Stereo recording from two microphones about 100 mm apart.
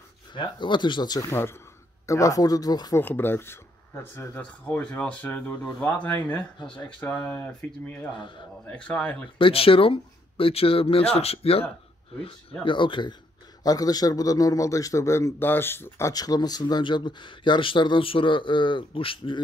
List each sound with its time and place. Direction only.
0.3 s speech: 50° left (ahead or behind)
1.3 s a man's voice: 25° left (ahead or behind); by 2.9 s 40° left (ahead or behind)
3.0 s speech: 20° left (ahead or behind)
4.6 s speech: 15° left (ahead or behind)
8.2 s speech: 55° left (ahead or behind)
8.6 s speech: 10° left (ahead or behind)
9.4 s speech: 65° left (ahead or behind); by 11.6 s 85° left
12.2 s speech: 70° left (ahead or behind)
12.6 s speech: 55° left (ahead or behind)
13.6 s a man's voice: 40° left (ahead or behind); by 16.1 s 25° left (ahead or behind)
16.1 s speech: 40° left (ahead or behind); by 19.4 s 60° left (ahead or behind)